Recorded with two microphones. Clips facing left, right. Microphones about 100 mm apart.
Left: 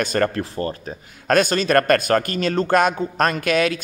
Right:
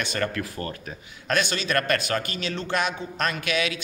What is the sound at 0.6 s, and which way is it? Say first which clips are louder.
Speech: left 7 dB; 35° left (ahead or behind).